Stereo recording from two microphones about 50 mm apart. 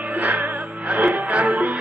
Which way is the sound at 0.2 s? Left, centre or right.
Right.